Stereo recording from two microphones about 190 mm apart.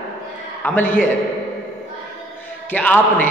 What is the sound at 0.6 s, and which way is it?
Speech, 10° left (ahead or behind).